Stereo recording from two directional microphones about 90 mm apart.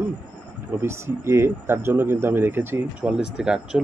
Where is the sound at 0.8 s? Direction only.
30° right (ahead or behind).